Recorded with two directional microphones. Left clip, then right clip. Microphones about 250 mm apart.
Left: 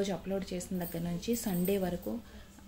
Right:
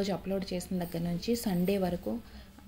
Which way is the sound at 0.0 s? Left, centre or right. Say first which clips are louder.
Right 1 dB; centre.